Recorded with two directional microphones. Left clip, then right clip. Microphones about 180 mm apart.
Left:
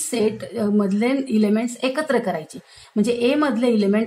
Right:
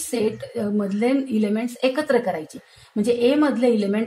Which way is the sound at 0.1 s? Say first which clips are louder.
Left 1 dB; 15° left (ahead or behind).